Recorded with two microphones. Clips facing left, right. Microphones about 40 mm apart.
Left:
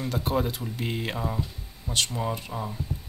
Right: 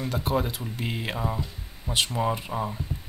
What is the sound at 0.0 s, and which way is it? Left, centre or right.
Speech, centre.